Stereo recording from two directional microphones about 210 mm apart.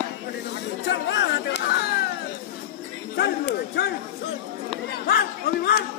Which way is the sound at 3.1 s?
50° left (ahead or behind).